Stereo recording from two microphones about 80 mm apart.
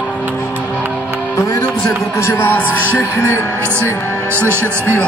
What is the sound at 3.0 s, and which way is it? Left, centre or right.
Speech, left.